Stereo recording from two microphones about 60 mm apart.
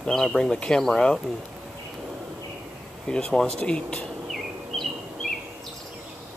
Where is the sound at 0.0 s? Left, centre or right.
Centre.